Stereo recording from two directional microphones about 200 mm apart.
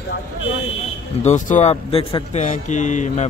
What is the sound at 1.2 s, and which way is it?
Speech, 35° left (ahead or behind).